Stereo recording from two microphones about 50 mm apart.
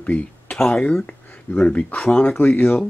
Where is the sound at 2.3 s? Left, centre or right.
Left.